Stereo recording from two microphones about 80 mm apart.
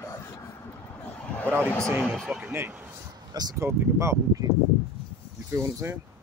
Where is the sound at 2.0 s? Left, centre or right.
Centre.